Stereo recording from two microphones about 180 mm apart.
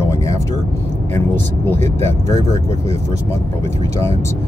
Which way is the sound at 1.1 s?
15° left (ahead or behind).